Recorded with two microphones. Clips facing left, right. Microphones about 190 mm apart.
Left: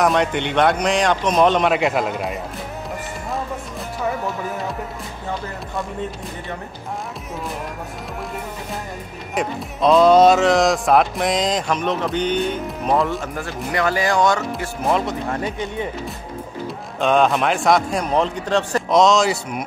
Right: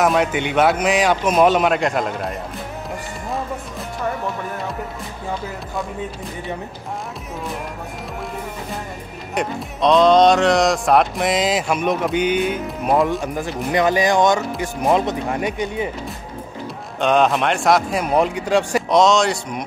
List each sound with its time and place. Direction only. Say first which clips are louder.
0.0 s speech: right 1 dB; 5° right (ahead or behind)
9.3 s speech: even; centre (ahead or behind); by 15.5 s 20° right (ahead or behind)
17.0 s speech: even; centre (ahead or behind)
18.9 s speech: left 1 dB; centre (ahead or behind)